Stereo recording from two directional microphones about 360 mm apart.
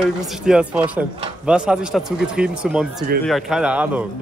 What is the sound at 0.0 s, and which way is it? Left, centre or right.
A man's voice, centre.